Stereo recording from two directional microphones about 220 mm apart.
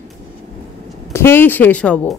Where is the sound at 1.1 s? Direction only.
10° left (ahead or behind).